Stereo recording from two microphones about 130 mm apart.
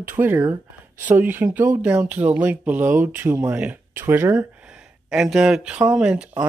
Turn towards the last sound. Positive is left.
turn(degrees=-10)  # may be behind; listen again after turning